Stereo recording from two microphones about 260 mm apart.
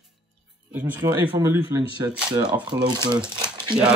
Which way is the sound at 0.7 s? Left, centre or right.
Centre.